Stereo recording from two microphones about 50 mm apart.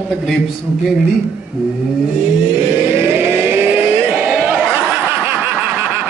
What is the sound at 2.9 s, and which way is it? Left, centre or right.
Vehicle, right.